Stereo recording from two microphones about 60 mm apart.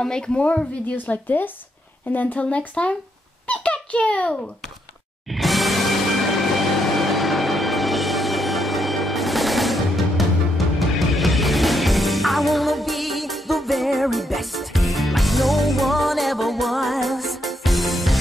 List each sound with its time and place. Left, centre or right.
0.0 s a woman's voice: centre
0.8 s a woman's voice: left
5.3 s music: centre